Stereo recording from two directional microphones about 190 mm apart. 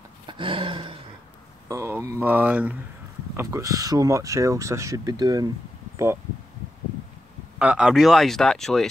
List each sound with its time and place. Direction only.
0.3 s a sound: 25° right (ahead or behind)
1.7 s speech: 15° right (ahead or behind)
7.5 s speech: 5° right (ahead or behind)